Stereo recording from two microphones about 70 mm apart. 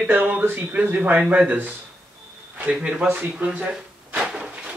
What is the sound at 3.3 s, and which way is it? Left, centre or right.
Drawer open or close, centre.